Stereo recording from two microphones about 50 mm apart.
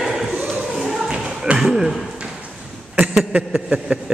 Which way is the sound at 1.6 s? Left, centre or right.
Centre.